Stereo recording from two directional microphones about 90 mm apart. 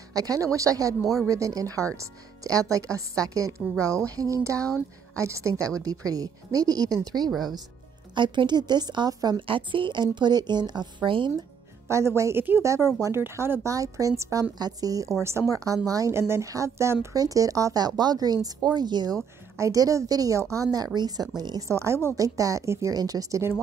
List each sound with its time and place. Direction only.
0.1 s a woman's voice: 40° right (ahead or behind)
8.1 s speech: 60° right (ahead or behind)
9.5 s a woman's voice: 70° right (ahead or behind)
10.0 s speech: 55° right (ahead or behind)
11.9 s a woman's voice: 30° right (ahead or behind)
13.7 s a woman's voice: 40° right (ahead or behind)
14.6 s a woman's voice: 45° right (ahead or behind)
19.5 s a woman's voice: 35° right (ahead or behind)
21.6 s a woman's voice: 30° right (ahead or behind)